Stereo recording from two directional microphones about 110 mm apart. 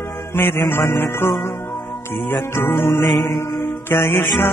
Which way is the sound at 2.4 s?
25° left (ahead or behind).